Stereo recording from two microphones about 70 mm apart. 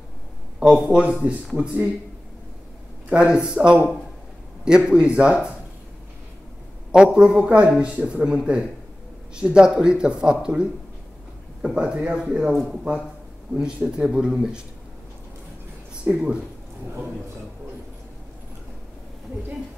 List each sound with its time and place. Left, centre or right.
0.7 s speech: centre
3.1 s speech: centre
6.9 s speech: centre
12.5 s speech: centre
13.6 s speech: centre
16.1 s speech: centre